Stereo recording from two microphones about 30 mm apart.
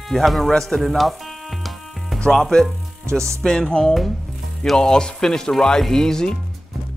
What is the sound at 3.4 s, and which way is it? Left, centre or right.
Speech, left.